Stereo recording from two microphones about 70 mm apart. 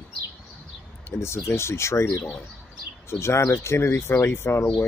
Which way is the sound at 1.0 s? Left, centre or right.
Left.